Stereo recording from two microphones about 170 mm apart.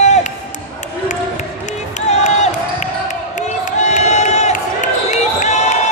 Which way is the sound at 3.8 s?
40° left (ahead or behind).